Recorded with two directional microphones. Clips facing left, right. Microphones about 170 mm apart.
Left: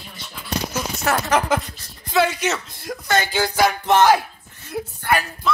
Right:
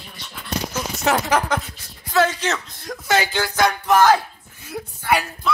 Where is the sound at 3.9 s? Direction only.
25° left (ahead or behind).